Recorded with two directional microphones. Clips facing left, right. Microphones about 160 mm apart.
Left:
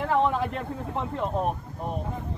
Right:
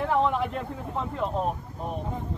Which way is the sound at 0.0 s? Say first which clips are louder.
Even; centre (ahead or behind).